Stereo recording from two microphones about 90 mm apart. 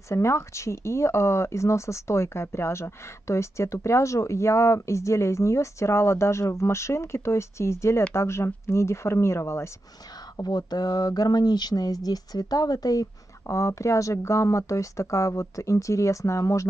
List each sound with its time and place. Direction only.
0.1 s speech: 30° left (ahead or behind)
10.3 s speech: 50° left (ahead or behind)